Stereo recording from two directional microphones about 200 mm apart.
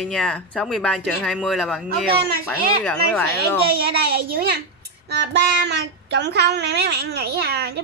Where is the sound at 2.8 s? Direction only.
10° left (ahead or behind).